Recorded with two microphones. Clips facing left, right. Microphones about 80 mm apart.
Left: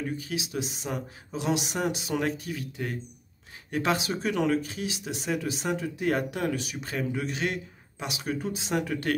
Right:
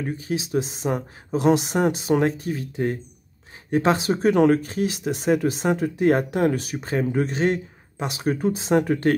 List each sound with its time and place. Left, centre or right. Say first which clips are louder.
0.0 s speech: right 5 dB; right